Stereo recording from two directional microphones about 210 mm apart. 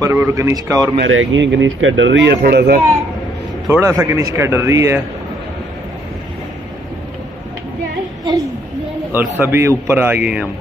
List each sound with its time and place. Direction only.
0.0 s a man's voice: 15° right (ahead or behind)
0.9 s speech: 65° right (ahead or behind)
2.4 s speech: 50° right (ahead or behind)
3.6 s a man's voice: centre (ahead or behind)
4.0 s a man's voice: 15° right (ahead or behind)
9.1 s a man's voice: 10° right (ahead or behind)